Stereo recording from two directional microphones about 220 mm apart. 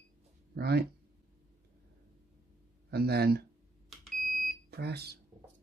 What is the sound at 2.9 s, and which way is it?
Speech, 45° right (ahead or behind).